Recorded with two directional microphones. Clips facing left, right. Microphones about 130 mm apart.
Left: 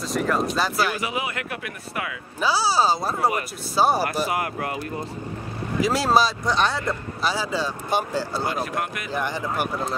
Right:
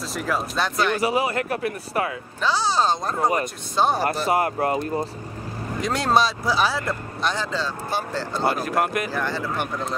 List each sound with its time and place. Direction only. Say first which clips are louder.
0.1 s speech: left 4 dB; centre (ahead or behind)
0.9 s speech: right 6 dB; 35° right (ahead or behind)
2.4 s speech: left 1 dB; 10° left (ahead or behind)
4.3 s speech: right 5 dB; 35° right (ahead or behind)
5.8 s speech: left 1 dB; 5° left (ahead or behind)